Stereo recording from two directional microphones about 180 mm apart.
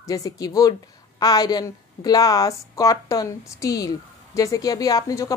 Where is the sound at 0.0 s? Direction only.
20° left (ahead or behind).